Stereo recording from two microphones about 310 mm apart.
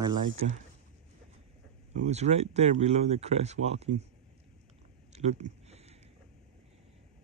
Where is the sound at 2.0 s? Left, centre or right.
Right.